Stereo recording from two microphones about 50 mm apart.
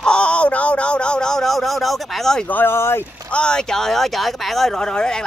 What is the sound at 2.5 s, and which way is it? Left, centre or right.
Speech, left.